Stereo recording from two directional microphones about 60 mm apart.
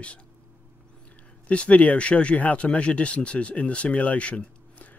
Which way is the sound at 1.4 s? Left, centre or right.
Left.